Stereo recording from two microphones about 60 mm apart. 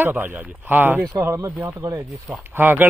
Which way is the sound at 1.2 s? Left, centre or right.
Right.